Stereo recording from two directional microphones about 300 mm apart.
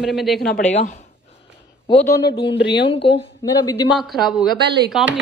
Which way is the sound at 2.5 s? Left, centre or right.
Left.